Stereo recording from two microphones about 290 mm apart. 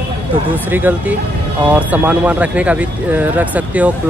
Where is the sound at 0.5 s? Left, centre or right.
Centre.